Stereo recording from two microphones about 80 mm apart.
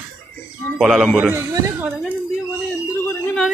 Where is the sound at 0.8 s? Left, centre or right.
Centre.